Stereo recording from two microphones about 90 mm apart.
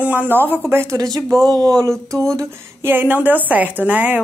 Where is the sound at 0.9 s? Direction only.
40° right (ahead or behind).